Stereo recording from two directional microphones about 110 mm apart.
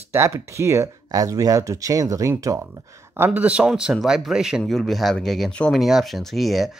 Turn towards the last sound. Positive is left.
turn(degrees=0)  # may be behind; listen again after turning